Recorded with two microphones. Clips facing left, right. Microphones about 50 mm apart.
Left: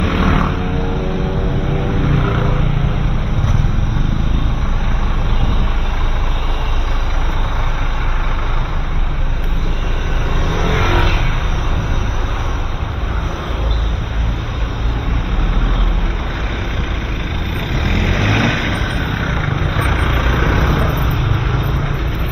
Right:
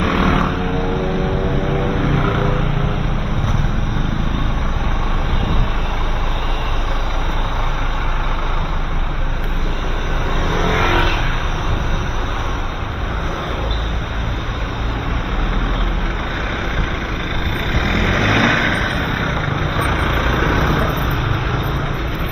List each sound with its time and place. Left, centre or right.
0.2 s wild animals: centre
2.0 s vehicle: centre
10.7 s vehicle: right
17.7 s vehicle: right
19.5 s vehicle: centre